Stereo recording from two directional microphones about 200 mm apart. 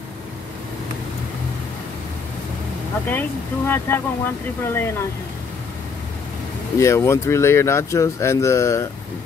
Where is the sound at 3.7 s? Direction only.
10° left (ahead or behind).